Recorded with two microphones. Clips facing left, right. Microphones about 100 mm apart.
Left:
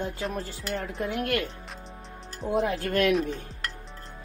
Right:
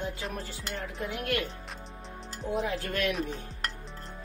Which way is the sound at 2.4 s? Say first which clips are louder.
Left 5 dB; 90° left.